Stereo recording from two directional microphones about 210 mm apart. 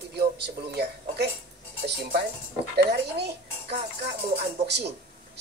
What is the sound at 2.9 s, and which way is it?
Speech, 50° right (ahead or behind).